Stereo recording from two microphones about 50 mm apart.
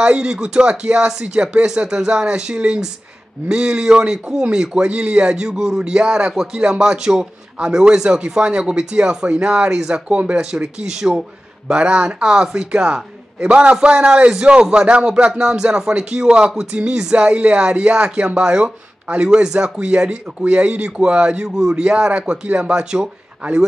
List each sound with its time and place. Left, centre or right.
0.0 s speech: centre
10.0 s speech: right
11.6 s speech: right